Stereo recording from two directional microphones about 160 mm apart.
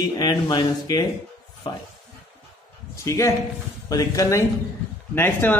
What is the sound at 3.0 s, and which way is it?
Speech, 20° left (ahead or behind).